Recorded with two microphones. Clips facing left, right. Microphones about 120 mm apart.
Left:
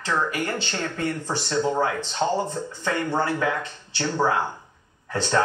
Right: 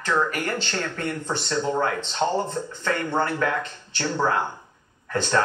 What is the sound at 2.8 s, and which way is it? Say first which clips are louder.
Speech: even; 15° left (ahead or behind).